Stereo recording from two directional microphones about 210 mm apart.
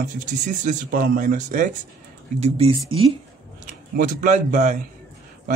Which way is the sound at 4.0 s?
35° right (ahead or behind).